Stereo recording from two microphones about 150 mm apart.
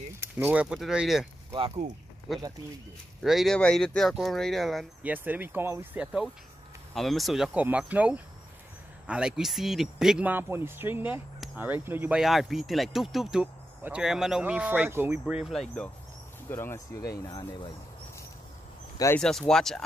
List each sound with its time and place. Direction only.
0.2 s speech: 15° right (ahead or behind)
3.2 s speech: centre (ahead or behind)
5.0 s speech: 10° right (ahead or behind); by 15.9 s 5° left (ahead or behind)
16.4 s speech: 15° left (ahead or behind)
19.1 s speech: 5° left (ahead or behind)